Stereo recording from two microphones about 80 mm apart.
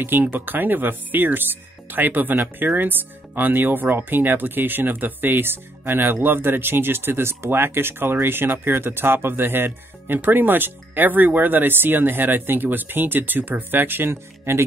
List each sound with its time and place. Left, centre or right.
0.0 s speech: right